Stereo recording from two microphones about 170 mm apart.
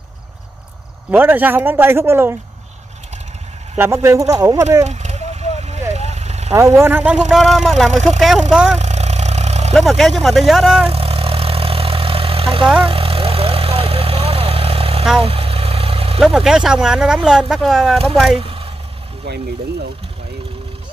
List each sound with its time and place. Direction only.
1.1 s speech: 10° right (ahead or behind)
3.7 s speech: 15° right (ahead or behind)
4.8 s vehicle: 40° right (ahead or behind)
6.5 s speech: 15° right (ahead or behind)
7.2 s speech: centre (ahead or behind)
8.7 s vehicle: 40° right (ahead or behind)
9.8 s speech: centre (ahead or behind)
10.9 s vehicle: 35° right (ahead or behind)
16.2 s speech: 5° right (ahead or behind)
18.4 s vehicle: 35° right (ahead or behind)
19.2 s speech: 75° right (ahead or behind)